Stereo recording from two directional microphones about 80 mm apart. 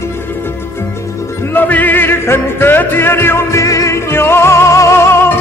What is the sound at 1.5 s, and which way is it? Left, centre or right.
Music, left.